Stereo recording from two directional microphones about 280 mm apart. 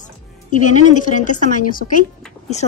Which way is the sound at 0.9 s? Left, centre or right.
Left.